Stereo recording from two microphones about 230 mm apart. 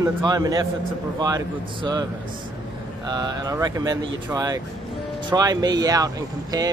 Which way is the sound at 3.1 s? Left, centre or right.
Centre.